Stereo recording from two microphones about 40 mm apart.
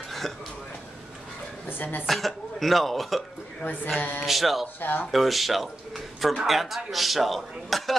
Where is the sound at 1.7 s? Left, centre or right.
Left.